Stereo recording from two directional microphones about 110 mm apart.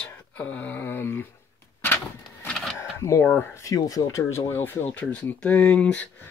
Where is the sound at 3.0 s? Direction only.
30° left (ahead or behind); by 6.0 s 10° left (ahead or behind).